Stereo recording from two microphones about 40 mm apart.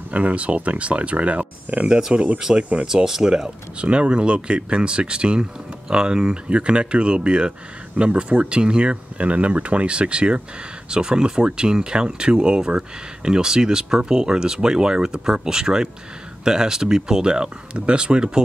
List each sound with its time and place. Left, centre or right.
0.1 s speech: right
1.9 s speech: centre
3.8 s speech: right